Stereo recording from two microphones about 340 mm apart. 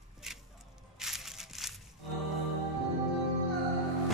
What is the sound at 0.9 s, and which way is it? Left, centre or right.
Crushing, centre.